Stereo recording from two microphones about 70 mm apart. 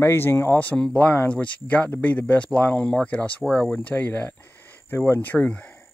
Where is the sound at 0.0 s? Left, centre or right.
Left.